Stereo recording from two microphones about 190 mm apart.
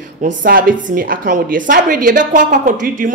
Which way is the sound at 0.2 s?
45° right (ahead or behind).